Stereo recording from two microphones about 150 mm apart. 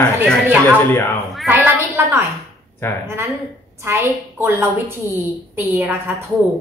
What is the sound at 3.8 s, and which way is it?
A woman's voice, 15° right (ahead or behind).